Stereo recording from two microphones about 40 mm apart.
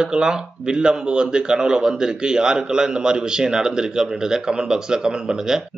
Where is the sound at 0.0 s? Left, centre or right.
Centre.